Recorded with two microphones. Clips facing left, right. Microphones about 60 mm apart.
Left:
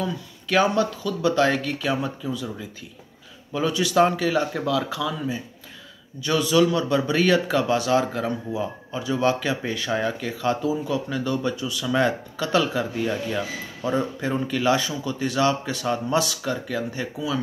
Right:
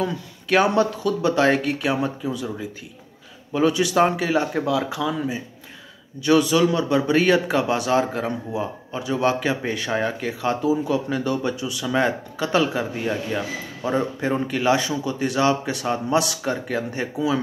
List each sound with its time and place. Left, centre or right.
0.0 s a man's voice: right
3.5 s a man's voice: right
6.2 s a man's voice: right